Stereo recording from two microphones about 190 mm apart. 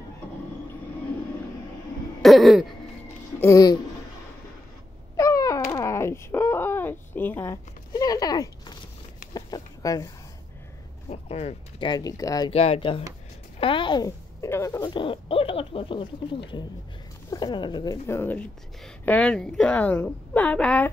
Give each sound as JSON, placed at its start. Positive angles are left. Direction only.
{"t": 2.2, "sound": "throat clearing", "side_deg": 0}
{"t": 3.3, "sound": "speech", "side_deg": 15}
{"t": 5.1, "sound": "a sound", "side_deg": 15}
{"t": 7.9, "sound": "speech", "side_deg": 20}
{"t": 9.3, "sound": "a sound", "side_deg": 20}
{"t": 11.1, "sound": "speech", "side_deg": 35}
{"t": 12.4, "sound": "speech", "side_deg": 30}